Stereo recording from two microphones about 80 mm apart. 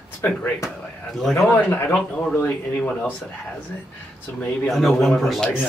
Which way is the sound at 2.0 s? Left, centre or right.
Centre.